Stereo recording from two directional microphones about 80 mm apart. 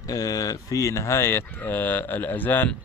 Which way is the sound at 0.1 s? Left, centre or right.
Left.